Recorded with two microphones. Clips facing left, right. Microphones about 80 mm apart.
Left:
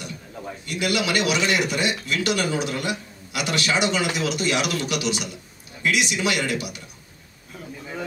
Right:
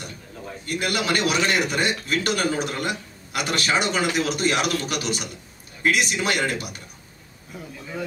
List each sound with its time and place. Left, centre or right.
0.7 s speech: right